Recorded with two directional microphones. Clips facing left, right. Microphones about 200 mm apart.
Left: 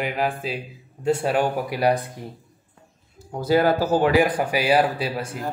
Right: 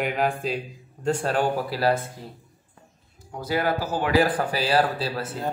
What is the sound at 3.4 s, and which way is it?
Speech, 30° left (ahead or behind).